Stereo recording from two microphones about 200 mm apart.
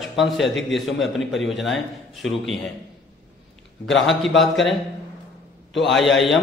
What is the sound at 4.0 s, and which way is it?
Speech, centre (ahead or behind).